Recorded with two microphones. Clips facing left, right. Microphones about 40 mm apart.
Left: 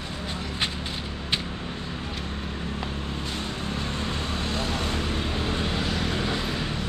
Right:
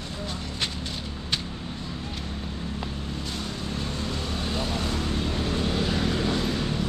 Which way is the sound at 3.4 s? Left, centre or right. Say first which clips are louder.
Left 1 dB; left.